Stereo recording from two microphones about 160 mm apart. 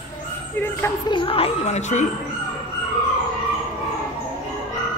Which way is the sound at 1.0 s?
30° left (ahead or behind).